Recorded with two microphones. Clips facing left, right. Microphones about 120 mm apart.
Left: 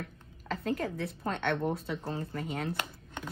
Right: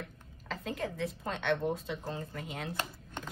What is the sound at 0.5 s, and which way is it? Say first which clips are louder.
A woman's voice: left 4 dB; 45° left (ahead or behind).